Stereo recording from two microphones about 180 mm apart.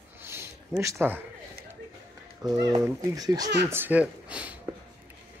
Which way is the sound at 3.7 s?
10° right (ahead or behind).